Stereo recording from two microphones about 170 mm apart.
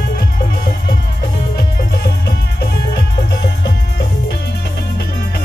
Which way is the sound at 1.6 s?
70° left (ahead or behind).